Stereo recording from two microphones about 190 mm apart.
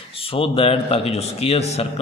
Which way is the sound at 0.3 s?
30° left (ahead or behind).